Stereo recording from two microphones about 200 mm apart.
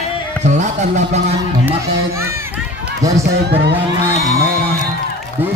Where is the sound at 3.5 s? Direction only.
55° right (ahead or behind).